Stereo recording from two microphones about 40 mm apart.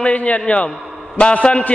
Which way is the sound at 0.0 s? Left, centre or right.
Left.